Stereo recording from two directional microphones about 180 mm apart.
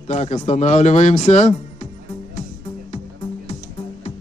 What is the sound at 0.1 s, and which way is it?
Speech, 40° left (ahead or behind).